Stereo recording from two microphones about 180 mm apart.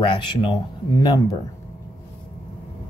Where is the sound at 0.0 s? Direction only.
25° left (ahead or behind).